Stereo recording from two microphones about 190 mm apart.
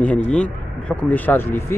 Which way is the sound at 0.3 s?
5° left (ahead or behind).